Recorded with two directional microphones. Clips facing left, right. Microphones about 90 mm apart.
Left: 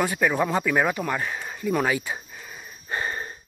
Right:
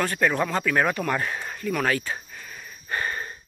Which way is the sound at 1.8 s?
15° left (ahead or behind).